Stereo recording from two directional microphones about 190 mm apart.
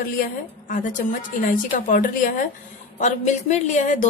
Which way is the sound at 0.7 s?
40° left (ahead or behind).